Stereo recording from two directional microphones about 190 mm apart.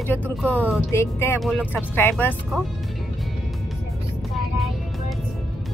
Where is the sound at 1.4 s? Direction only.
Centre (ahead or behind).